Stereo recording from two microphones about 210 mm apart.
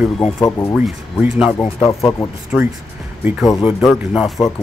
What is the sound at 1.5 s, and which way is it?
Speech, 15° left (ahead or behind).